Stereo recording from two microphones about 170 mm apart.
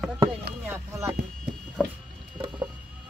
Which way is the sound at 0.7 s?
15° right (ahead or behind).